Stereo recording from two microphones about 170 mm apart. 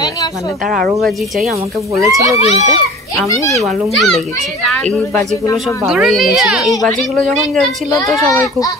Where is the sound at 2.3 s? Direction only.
40° left (ahead or behind).